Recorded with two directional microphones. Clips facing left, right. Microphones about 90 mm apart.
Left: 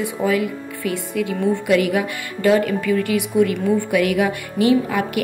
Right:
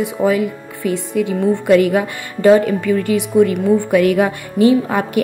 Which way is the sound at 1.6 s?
35° right (ahead or behind).